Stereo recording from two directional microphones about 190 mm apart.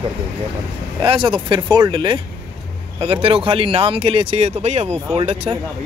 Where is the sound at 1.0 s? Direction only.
25° right (ahead or behind).